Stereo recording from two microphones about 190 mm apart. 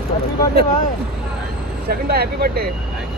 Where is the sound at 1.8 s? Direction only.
55° right (ahead or behind).